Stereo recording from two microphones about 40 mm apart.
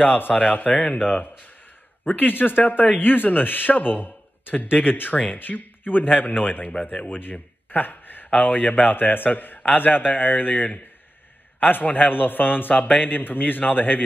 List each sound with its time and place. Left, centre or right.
0.0 s speech: left
0.4 s speech: left